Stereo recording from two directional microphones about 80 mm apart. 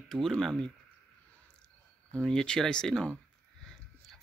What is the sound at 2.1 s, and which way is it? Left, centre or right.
Speech, centre.